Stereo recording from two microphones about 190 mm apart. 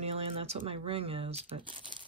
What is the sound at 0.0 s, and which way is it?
Speech, 30° right (ahead or behind).